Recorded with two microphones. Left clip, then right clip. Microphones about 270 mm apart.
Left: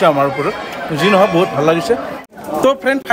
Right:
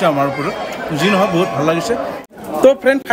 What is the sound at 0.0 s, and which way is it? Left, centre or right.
A man's voice, centre.